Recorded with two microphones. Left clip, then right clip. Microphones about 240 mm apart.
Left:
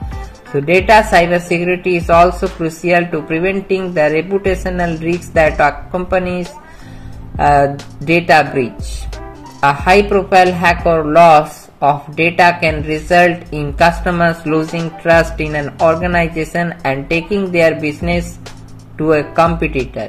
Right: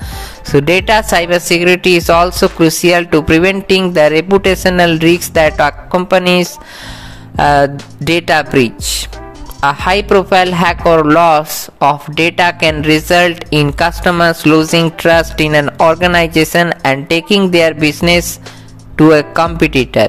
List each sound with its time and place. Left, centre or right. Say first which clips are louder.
0.7 s speech: left 3 dB; right